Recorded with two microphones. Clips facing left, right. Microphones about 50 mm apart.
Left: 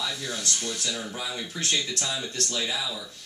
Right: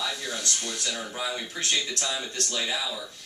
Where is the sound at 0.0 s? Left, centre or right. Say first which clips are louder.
Even; centre.